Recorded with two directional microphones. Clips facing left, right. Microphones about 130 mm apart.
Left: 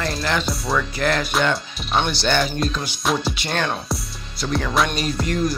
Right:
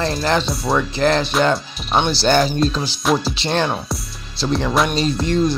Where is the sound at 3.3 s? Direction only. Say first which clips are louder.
Right 4 dB; 30° right (ahead or behind).